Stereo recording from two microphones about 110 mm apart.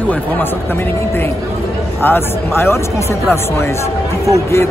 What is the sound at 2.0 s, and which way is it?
Speech, 20° left (ahead or behind).